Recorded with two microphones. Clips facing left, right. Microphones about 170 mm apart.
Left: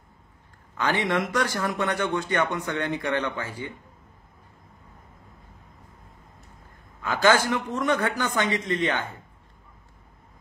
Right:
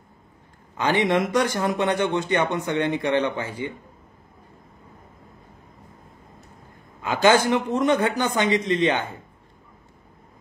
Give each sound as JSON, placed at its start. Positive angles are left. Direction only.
{"t": 0.7, "sound": "a man's voice", "side_deg": -20}
{"t": 7.0, "sound": "a man's voice", "side_deg": -20}